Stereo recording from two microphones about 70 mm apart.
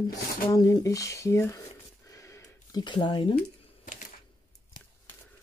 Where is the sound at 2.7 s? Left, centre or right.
Left.